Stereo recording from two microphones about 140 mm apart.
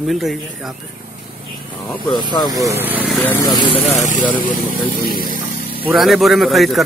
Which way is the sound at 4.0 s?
65° left (ahead or behind).